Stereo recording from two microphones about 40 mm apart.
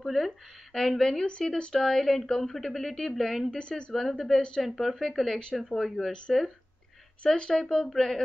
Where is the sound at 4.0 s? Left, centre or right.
Centre.